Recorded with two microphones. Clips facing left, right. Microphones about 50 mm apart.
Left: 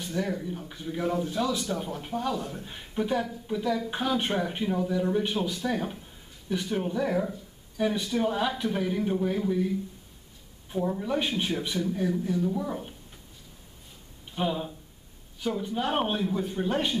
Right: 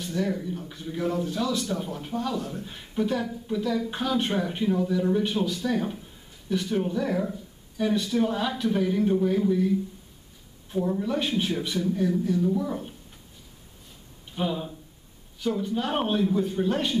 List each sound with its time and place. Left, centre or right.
0.0 s speech: centre
14.3 s speech: centre